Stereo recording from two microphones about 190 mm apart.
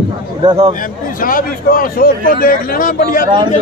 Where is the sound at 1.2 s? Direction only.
50° left (ahead or behind).